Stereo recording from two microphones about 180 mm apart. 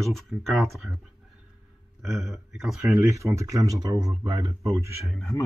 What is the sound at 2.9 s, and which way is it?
Speech, 15° right (ahead or behind).